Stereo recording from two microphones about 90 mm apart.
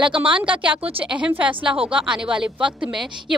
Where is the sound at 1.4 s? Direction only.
80° right.